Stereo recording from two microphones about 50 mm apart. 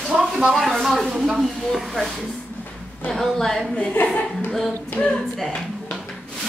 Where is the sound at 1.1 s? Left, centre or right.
Centre.